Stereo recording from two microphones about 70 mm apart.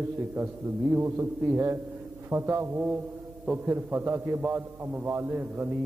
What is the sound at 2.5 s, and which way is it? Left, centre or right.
A man's voice, right.